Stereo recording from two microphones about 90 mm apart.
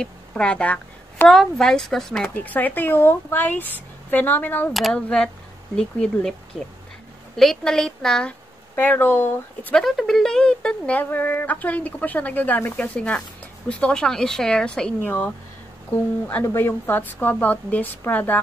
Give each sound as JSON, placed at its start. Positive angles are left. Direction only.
{"t": 0.0, "sound": "speech", "side_deg": 10}
{"t": 2.3, "sound": "speech", "side_deg": 20}
{"t": 7.3, "sound": "speech", "side_deg": 5}
{"t": 8.7, "sound": "speech", "side_deg": 20}
{"t": 9.8, "sound": "speech", "side_deg": 0}
{"t": 11.0, "sound": "speech", "side_deg": 20}